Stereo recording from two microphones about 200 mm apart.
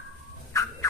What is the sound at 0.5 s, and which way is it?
Turkey, 15° left (ahead or behind).